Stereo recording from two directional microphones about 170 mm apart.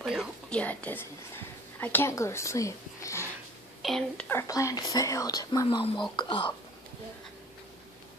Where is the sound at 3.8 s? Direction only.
Centre (ahead or behind).